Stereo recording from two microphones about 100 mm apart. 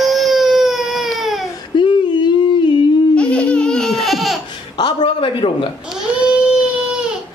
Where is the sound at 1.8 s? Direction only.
55° left (ahead or behind).